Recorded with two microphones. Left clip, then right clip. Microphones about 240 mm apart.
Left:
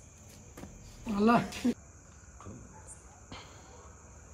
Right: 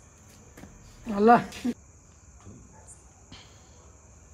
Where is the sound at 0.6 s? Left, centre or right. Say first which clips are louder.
Even; centre.